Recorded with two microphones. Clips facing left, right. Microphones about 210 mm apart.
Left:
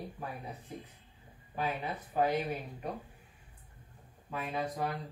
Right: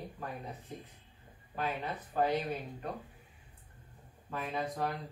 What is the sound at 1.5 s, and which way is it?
Speech, 15° left (ahead or behind).